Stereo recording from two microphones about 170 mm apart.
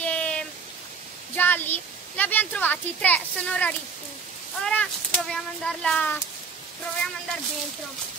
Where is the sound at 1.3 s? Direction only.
10° left (ahead or behind).